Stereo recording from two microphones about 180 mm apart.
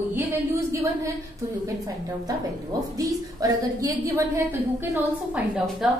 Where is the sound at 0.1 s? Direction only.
15° right (ahead or behind).